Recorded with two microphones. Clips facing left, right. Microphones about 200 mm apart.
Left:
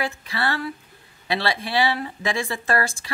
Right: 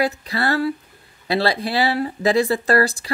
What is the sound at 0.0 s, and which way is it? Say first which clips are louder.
Speech: right 5 dB; 40° right (ahead or behind).